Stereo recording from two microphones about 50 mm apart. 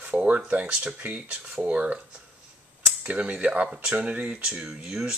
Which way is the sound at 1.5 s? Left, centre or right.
Centre.